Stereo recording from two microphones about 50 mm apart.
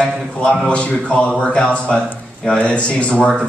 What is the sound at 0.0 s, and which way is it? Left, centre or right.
A man's voice, centre.